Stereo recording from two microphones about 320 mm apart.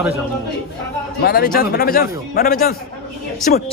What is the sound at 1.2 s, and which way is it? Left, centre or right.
A man's voice, left.